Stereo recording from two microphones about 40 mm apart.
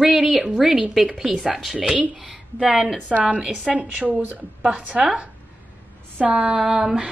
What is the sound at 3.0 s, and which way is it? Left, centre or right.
Speech, right.